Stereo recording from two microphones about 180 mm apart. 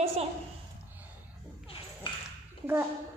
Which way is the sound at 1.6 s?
30° left (ahead or behind).